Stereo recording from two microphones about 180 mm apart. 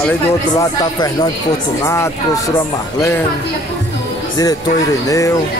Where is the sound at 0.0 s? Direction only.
10° left (ahead or behind).